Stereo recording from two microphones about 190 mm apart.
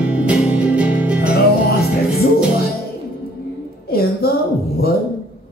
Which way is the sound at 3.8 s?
55° left (ahead or behind).